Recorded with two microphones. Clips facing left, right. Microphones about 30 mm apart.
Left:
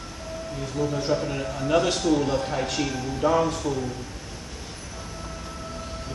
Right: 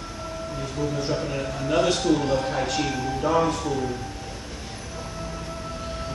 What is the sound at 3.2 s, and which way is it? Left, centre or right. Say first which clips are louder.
Speech: left 1 dB; centre.